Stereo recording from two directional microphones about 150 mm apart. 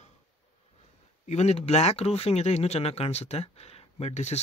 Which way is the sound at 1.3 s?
45° left (ahead or behind).